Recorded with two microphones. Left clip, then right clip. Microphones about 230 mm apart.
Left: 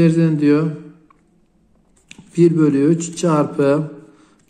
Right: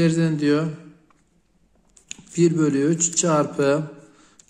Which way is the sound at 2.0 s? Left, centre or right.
Centre.